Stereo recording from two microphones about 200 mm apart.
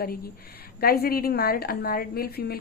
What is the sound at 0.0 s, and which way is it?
A woman's voice, 50° left (ahead or behind).